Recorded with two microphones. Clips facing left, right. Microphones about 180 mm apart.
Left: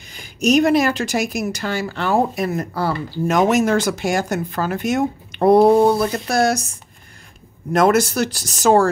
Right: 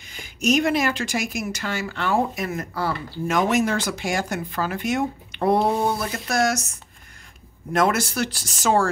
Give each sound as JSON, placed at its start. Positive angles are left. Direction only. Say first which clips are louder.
{"t": 0.1, "sound": "a woman's voice", "louder": "left 5 dB", "side_deg": 40}
{"t": 7.7, "sound": "a woman's voice", "louder": "left 6 dB", "side_deg": 40}